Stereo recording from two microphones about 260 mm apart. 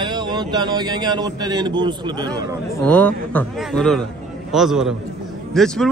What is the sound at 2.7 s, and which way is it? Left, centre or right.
A man's voice, centre.